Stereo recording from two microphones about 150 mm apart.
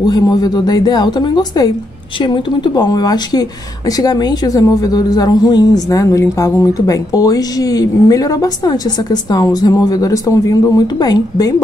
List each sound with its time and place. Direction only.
0.0 s speech: 25° left (ahead or behind)